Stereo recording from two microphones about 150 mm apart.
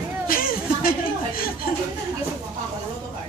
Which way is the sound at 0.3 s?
75° left (ahead or behind).